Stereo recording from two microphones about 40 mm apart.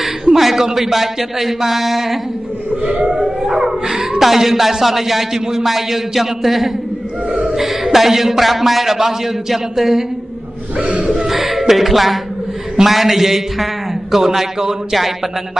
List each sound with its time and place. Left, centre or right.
0.0 s a sound: centre
0.7 s speech: centre
2.7 s siren: right
3.3 s wail: centre
4.2 s speech: centre
10.8 s a sound: right
11.2 s speech: centre